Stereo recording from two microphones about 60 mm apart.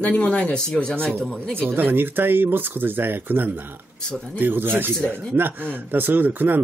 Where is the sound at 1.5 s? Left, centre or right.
Right.